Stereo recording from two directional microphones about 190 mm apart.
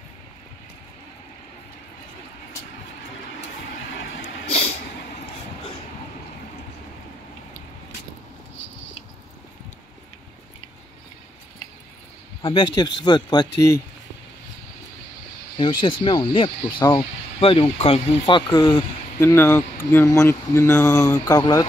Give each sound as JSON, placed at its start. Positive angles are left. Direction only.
{"t": 12.4, "sound": "speech", "side_deg": 25}
{"t": 15.5, "sound": "speech", "side_deg": 25}